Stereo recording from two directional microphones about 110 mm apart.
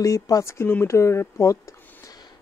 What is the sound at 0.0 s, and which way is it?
Speech, 30° left (ahead or behind).